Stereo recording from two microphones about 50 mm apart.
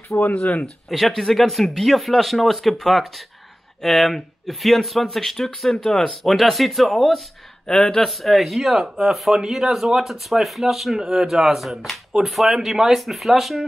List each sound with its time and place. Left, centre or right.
0.3 s speech: left
0.8 s speech: centre
6.2 s speech: centre
7.6 s speech: centre
8.1 s speech: centre